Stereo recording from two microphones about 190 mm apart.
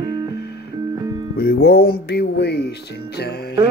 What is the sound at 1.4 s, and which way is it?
Speech, 55° left (ahead or behind).